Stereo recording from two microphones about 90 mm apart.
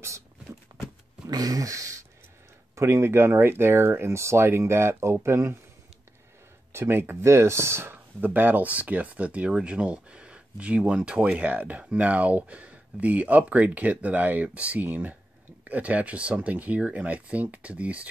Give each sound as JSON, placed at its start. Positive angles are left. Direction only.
{"t": 1.2, "sound": "a sound", "side_deg": -45}
{"t": 2.7, "sound": "speech", "side_deg": -30}
{"t": 6.7, "sound": "speech", "side_deg": -25}